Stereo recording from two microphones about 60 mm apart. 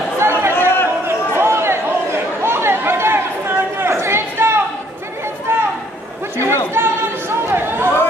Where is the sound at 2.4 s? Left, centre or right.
Right.